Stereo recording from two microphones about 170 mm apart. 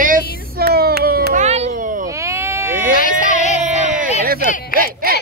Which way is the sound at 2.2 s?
15° right (ahead or behind).